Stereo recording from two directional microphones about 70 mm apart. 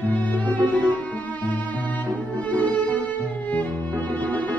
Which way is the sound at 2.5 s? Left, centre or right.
Left.